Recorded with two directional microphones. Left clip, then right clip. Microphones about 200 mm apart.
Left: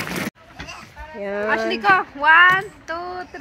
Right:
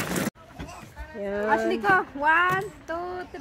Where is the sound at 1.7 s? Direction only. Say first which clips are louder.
Left 5 dB; 45° right (ahead or behind); by 3.0 s 25° right (ahead or behind).